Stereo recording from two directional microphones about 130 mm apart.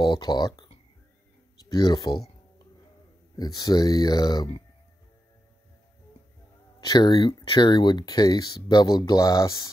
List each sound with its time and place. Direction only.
0.0 s speech: 35° left (ahead or behind)
3.3 s speech: 30° left (ahead or behind)
6.8 s speech: 30° left (ahead or behind)